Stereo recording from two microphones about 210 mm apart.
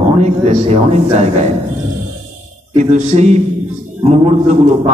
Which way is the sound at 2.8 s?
35° right (ahead or behind).